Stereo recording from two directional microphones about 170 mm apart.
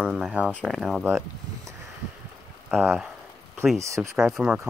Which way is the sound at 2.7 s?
5° right (ahead or behind).